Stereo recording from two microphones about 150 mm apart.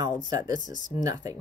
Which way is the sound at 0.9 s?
25° right (ahead or behind).